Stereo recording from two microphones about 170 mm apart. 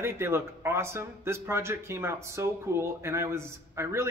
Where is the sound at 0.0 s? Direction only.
15° right (ahead or behind).